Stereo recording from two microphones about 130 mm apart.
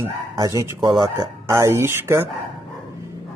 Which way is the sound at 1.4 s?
20° right (ahead or behind).